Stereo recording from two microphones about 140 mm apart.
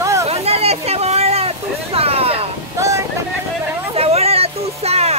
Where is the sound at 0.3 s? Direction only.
45° right (ahead or behind).